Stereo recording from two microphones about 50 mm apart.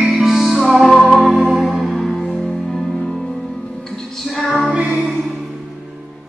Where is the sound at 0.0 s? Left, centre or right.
Centre.